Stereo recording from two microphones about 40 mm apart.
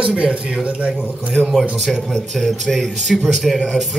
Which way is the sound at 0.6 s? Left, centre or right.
Right.